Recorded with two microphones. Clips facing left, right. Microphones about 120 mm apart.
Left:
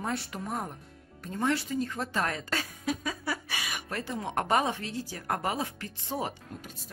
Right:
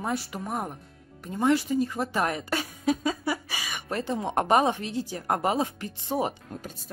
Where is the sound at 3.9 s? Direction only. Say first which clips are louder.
Right 6 dB; 25° right (ahead or behind).